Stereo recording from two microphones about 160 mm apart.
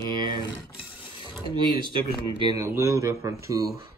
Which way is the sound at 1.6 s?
30° right (ahead or behind).